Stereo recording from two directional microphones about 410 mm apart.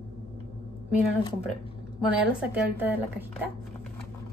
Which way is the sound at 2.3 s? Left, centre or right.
Centre.